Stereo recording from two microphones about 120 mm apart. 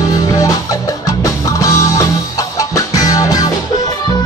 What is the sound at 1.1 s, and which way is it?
Music, 30° left (ahead or behind).